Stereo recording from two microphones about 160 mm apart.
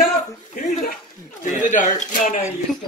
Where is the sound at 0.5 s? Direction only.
60° left (ahead or behind).